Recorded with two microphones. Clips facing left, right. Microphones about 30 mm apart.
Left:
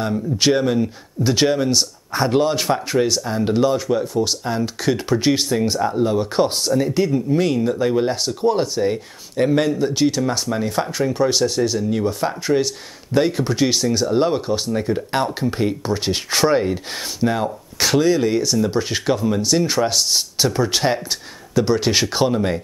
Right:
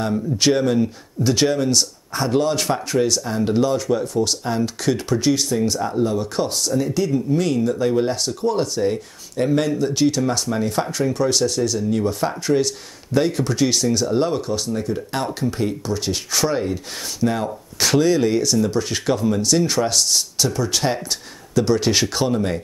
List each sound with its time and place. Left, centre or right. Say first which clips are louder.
0.0 s speech: even; centre
5.3 s speech: left 1 dB; left
17.3 s speech: left 2 dB; centre
20.4 s speech: left 4 dB; left